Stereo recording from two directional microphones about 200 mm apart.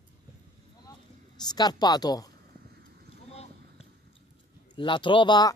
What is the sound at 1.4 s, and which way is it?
Speech, 20° left (ahead or behind).